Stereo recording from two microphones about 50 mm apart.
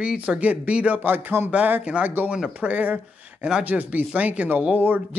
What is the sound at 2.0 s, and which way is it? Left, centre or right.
Speech, right.